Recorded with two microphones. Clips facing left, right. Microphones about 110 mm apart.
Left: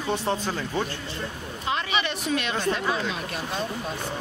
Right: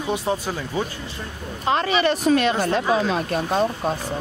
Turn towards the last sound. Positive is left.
turn(degrees=-45)  # may be behind; listen again after turning